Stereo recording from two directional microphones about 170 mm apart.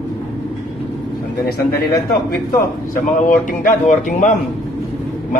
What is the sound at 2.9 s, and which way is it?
A man's voice, 50° left (ahead or behind).